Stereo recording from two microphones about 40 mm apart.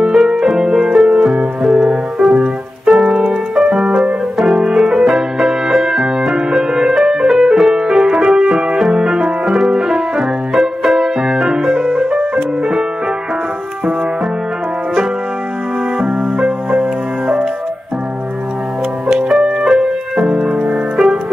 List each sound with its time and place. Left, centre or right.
0.0 s music: centre
8.9 s piano: centre
9.7 s music: centre
16.1 s music: right
19.0 s music: centre
20.9 s music: centre